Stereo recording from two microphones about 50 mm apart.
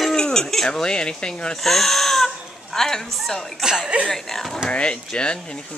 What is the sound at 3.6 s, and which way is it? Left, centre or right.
Cough, centre.